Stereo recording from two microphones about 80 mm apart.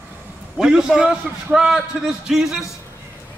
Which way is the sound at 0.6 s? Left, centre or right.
Centre.